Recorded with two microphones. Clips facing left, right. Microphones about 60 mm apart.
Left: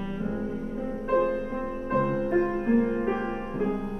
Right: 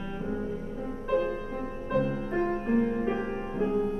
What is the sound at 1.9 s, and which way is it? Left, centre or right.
Music, left.